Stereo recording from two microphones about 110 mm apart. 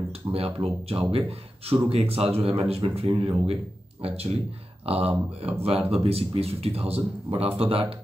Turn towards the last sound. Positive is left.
turn(degrees=-60)  # may be behind; listen again after turning